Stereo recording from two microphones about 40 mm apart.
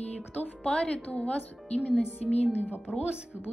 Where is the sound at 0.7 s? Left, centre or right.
Left.